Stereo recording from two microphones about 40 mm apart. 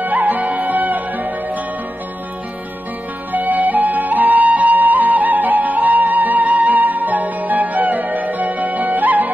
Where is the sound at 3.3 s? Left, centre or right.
Right.